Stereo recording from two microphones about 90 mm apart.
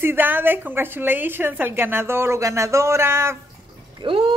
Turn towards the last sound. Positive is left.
turn(degrees=-75)  # may be behind; listen again after turning